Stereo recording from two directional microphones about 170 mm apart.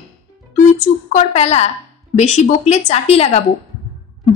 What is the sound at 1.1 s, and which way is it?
A woman's voice, 40° left (ahead or behind).